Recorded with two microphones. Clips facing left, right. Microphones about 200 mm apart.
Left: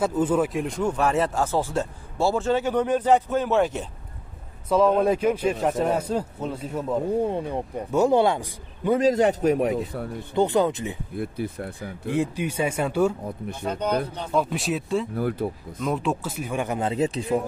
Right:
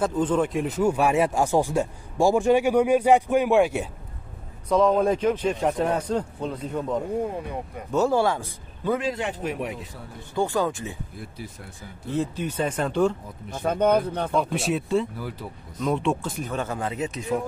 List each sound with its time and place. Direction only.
0.0 s speech: 10° left (ahead or behind); by 3.8 s 10° right (ahead or behind)
4.6 s a man's voice: 5° left (ahead or behind)
7.2 s speech: 30° left (ahead or behind)
7.9 s speech: 15° left (ahead or behind)
8.9 s a man's voice: 40° left (ahead or behind)
10.3 s speech: 20° left (ahead or behind)
11.1 s speech: 55° left (ahead or behind)
12.1 s speech: 10° left (ahead or behind)
13.6 s speech: 55° right (ahead or behind)
14.3 s a man's voice: centre (ahead or behind)
15.1 s speech: 55° left (ahead or behind)
15.8 s speech: centre (ahead or behind); by 17.4 s 30° left (ahead or behind)